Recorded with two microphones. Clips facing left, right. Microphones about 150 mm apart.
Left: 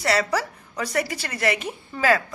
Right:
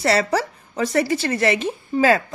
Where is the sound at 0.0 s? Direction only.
30° right (ahead or behind).